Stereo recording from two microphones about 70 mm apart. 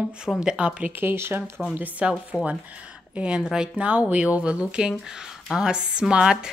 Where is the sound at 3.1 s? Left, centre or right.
Centre.